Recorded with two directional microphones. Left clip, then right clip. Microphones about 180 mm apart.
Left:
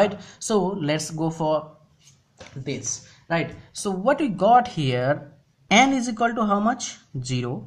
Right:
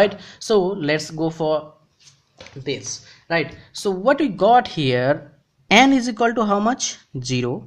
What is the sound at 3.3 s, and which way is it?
Speech, 25° right (ahead or behind).